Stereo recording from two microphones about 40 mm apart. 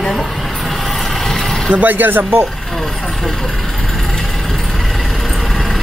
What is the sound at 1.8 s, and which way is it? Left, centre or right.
Speech, right.